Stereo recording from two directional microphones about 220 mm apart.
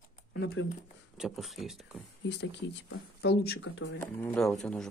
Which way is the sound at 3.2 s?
50° left (ahead or behind).